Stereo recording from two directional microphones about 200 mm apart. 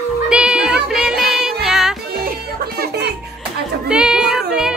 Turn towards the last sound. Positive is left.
turn(degrees=-5)  # may be behind; listen again after turning